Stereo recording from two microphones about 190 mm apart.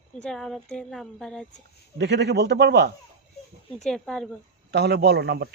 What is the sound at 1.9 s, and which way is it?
Speech, 65° right (ahead or behind).